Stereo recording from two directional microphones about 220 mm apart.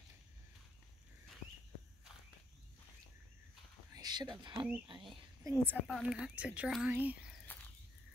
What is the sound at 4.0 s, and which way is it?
Speech, 20° right (ahead or behind).